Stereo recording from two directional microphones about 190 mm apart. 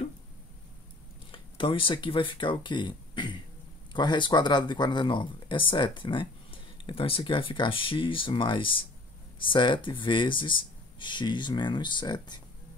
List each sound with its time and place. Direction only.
1.3 s speech: 25° left (ahead or behind)